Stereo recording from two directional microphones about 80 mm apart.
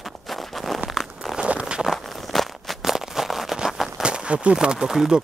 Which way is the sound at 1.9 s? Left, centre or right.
Centre.